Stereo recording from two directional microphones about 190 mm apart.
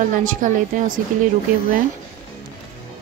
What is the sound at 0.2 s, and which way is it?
Speech, 45° right (ahead or behind).